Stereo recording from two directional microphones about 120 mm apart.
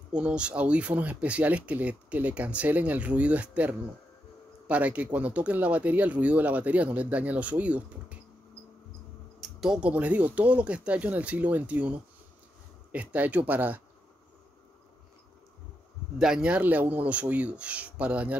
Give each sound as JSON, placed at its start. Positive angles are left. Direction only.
{"t": 0.1, "sound": "speech", "side_deg": -10}
{"t": 9.4, "sound": "speech", "side_deg": -5}
{"t": 16.2, "sound": "speech", "side_deg": -5}